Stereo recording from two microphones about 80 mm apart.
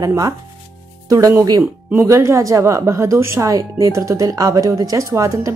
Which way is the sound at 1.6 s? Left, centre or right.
Right.